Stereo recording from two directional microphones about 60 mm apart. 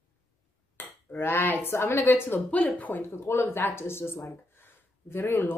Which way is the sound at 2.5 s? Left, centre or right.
Left.